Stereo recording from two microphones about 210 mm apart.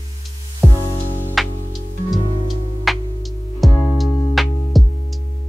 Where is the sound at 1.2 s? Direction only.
Centre (ahead or behind).